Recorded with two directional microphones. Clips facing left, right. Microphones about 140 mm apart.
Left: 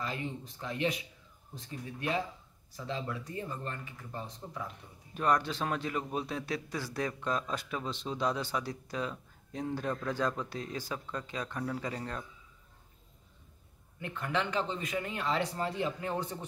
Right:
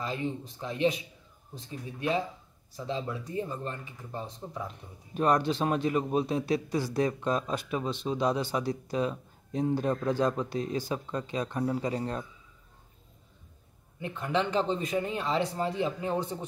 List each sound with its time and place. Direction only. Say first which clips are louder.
0.0 s a man's voice: right 5 dB; 25° right (ahead or behind)
13.9 s a man's voice: right 4 dB; 20° right (ahead or behind)